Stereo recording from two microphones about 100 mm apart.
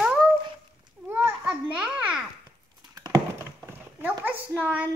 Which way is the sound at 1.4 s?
10° right (ahead or behind).